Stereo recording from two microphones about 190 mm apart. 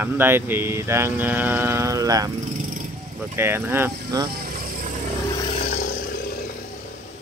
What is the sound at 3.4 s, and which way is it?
Speech, 10° right (ahead or behind).